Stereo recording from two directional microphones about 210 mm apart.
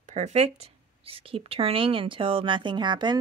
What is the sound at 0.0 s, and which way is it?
A woman's voice, 35° right (ahead or behind).